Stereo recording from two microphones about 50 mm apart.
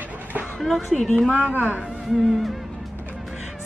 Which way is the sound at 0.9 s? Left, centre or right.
Centre.